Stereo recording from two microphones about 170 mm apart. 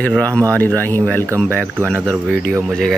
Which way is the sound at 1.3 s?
10° right (ahead or behind).